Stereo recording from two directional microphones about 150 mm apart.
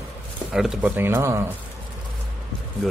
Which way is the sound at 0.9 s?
15° right (ahead or behind).